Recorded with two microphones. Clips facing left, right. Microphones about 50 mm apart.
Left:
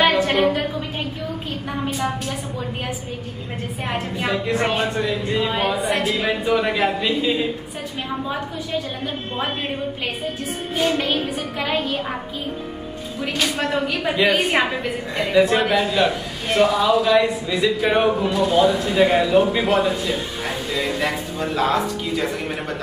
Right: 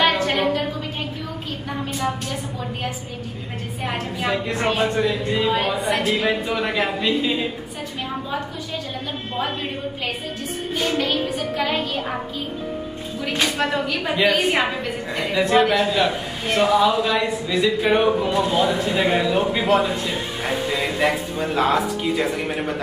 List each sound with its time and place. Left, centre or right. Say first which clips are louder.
0.0 s a sound: left 2 dB; centre
4.5 s a man's voice: left 1 dB; centre
10.8 s music: left 2 dB; centre
13.6 s a man's voice: even; centre
20.1 s a sound: even; centre
22.0 s speech: right 2 dB; centre